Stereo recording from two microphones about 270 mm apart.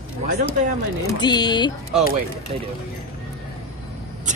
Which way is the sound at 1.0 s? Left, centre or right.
Centre.